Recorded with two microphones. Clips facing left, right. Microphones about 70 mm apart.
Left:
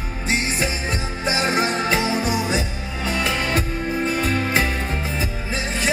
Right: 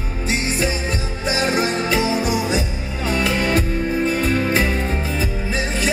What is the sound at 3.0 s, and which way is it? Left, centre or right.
Music, right.